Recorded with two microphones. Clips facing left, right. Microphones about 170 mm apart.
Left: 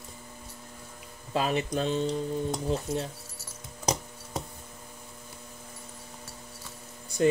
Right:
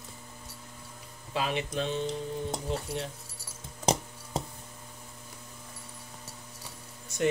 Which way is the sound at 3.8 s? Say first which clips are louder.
Right 2 dB; 25° right (ahead or behind).